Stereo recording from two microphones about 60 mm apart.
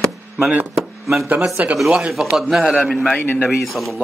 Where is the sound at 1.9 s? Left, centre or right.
Centre.